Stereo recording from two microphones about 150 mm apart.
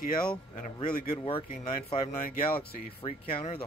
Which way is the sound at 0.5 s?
55° left (ahead or behind).